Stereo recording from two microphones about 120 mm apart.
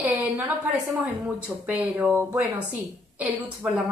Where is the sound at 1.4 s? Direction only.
10° right (ahead or behind).